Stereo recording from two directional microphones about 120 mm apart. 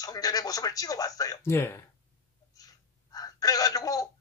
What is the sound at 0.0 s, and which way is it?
Speech, 30° left (ahead or behind).